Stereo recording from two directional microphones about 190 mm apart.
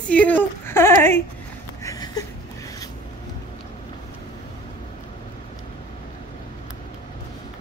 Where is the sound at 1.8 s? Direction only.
20° left (ahead or behind).